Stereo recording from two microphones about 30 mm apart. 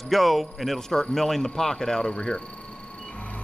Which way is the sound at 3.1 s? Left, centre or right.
Left.